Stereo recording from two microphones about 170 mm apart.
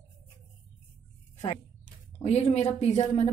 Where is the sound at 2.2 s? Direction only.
40° left (ahead or behind).